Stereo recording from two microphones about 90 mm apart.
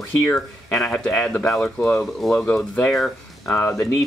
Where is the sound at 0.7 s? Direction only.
5° left (ahead or behind).